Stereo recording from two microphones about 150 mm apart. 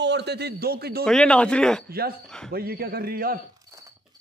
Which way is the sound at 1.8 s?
90° right.